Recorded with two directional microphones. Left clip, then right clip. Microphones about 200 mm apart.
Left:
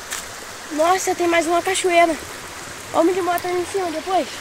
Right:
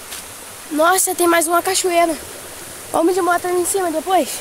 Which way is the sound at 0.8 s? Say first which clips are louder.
Right 3 dB; 35° right (ahead or behind).